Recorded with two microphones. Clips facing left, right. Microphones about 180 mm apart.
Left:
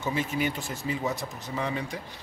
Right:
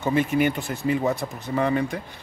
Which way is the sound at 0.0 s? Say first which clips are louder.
Right 7 dB; 60° right (ahead or behind).